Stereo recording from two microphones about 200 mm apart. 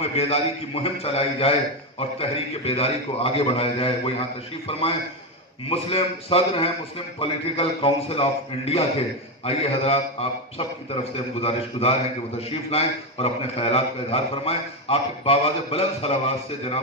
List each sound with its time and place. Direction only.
0.0 s a man's voice: 30° left (ahead or behind)